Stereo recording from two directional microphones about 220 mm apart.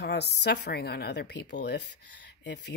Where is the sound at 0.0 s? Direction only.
50° left (ahead or behind).